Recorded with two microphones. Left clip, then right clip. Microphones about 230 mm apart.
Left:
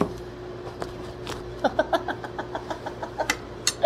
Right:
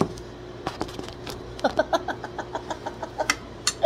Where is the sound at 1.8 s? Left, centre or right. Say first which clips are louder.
Even; right.